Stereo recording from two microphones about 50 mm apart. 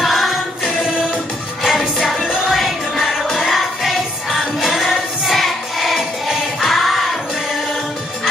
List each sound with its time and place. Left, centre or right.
0.0 s music: centre
0.7 s music: right
1.6 s music: centre
3.3 s music: centre